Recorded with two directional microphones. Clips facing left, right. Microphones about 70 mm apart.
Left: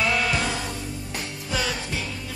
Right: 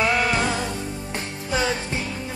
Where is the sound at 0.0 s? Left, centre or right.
Right.